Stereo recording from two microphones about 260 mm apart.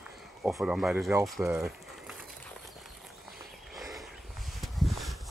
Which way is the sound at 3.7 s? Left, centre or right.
Centre.